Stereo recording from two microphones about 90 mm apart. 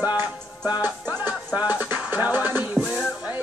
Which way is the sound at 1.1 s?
15° right (ahead or behind).